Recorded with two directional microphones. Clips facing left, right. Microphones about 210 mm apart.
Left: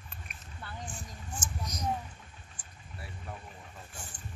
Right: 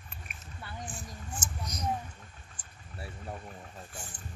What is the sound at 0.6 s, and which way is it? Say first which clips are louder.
Speech: even; 10° right (ahead or behind).